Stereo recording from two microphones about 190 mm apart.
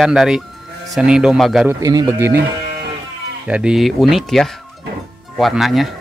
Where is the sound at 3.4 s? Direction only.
5° right (ahead or behind).